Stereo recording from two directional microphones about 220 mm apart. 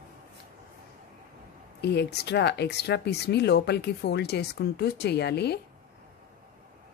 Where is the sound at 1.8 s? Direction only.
50° left (ahead or behind).